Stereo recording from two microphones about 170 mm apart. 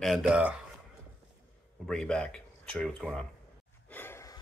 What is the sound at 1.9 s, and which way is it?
Speech, 5° left (ahead or behind).